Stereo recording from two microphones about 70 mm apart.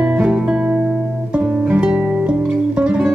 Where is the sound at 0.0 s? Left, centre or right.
Centre.